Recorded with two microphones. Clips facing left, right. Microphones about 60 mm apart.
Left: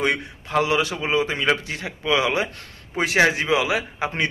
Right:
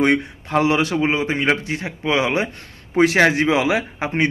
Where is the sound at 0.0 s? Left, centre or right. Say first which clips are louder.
Right 6 dB; right.